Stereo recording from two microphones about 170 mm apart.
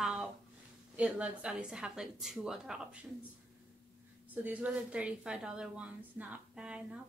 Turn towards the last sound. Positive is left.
turn(degrees=-5)  # may be behind; listen again after turning